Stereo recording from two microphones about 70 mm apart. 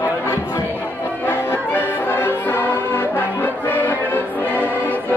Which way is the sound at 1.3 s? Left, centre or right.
Left.